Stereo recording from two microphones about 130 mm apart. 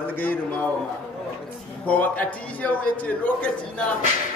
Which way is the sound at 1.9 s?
10° left (ahead or behind).